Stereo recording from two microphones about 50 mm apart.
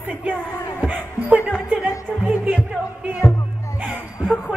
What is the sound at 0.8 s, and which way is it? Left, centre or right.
Music, right.